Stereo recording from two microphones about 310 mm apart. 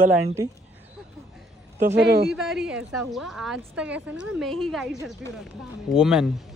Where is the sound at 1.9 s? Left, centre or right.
Right.